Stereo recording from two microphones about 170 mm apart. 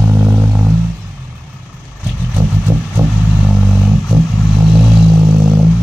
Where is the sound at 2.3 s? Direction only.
10° right (ahead or behind).